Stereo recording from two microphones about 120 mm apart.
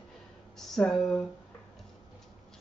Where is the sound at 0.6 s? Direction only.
5° left (ahead or behind).